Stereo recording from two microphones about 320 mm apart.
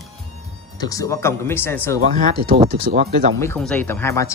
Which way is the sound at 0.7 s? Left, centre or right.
Centre.